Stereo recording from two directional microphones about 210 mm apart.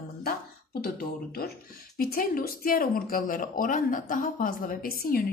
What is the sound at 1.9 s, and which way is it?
Speech, 45° left (ahead or behind).